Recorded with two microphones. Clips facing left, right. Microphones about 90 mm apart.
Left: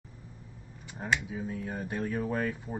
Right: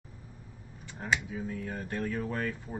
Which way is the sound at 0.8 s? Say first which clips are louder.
Left 2 dB; 15° left (ahead or behind).